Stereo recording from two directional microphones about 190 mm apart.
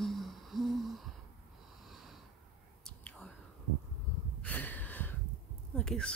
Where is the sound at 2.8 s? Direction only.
5° left (ahead or behind).